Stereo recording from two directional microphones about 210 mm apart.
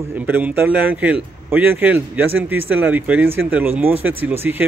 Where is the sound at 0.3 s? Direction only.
10° right (ahead or behind).